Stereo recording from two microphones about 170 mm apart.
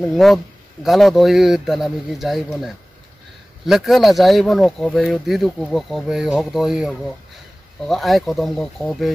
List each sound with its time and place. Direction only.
0.1 s speech: centre (ahead or behind)